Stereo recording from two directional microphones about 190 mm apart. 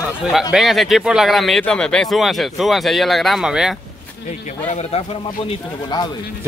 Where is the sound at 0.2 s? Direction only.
Centre (ahead or behind).